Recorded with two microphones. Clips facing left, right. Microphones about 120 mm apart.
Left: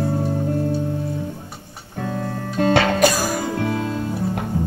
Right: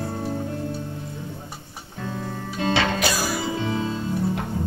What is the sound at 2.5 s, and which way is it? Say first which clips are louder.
Music: left 6 dB; 50° left (ahead or behind).